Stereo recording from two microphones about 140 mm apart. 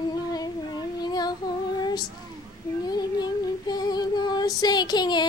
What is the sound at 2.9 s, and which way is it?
Female singing, 30° left (ahead or behind).